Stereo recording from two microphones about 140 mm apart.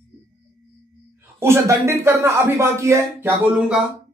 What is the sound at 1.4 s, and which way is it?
Speech, 20° right (ahead or behind).